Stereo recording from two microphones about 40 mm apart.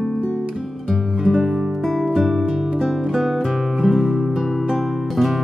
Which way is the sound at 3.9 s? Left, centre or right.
Centre.